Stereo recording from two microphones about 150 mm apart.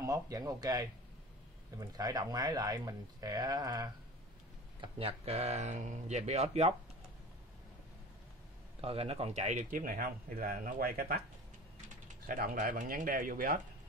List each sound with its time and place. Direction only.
0.0 s speech: 25° right (ahead or behind)
4.8 s speech: 40° right (ahead or behind)
8.8 s speech: 40° right (ahead or behind); by 11.2 s 80° right
12.1 s speech: 60° right (ahead or behind)